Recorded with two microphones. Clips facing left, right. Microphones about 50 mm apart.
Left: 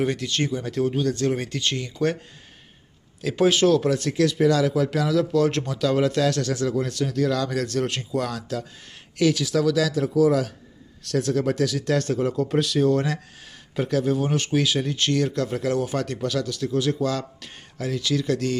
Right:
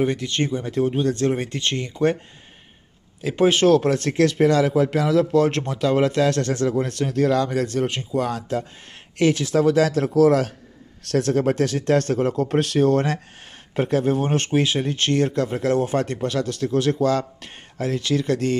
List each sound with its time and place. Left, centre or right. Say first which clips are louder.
0.0 s speech: right 2 dB; right
3.2 s speech: right 1 dB; right
9.9 s speech: right 3 dB; right